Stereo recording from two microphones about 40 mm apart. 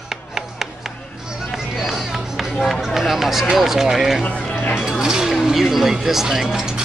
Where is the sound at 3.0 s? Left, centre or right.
Centre.